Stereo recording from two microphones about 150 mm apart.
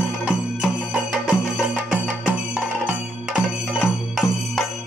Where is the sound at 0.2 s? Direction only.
10° right (ahead or behind).